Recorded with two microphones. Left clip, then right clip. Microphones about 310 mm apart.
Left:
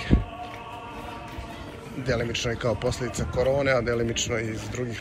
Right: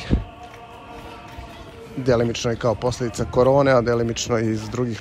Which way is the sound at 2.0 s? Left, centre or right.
Centre.